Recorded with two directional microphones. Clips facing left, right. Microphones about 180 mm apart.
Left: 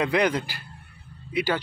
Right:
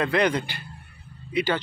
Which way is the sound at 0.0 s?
10° left (ahead or behind).